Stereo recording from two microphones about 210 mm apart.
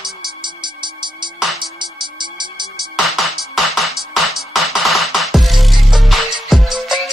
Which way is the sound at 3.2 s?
Centre (ahead or behind).